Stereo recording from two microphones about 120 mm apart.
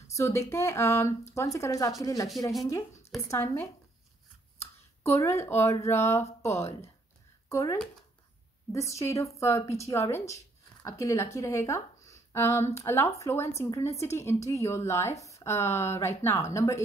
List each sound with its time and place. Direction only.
0.1 s speech: 25° left (ahead or behind)
3.3 s speech: 25° left (ahead or behind)